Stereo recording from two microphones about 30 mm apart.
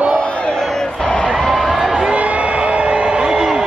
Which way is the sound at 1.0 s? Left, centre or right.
Left.